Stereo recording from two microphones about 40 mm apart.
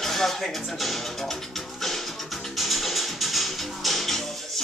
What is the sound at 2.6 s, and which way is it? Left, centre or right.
Music, centre.